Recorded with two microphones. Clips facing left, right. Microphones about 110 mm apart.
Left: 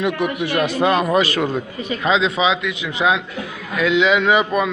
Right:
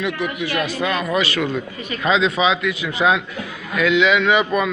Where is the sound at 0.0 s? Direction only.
50° left (ahead or behind).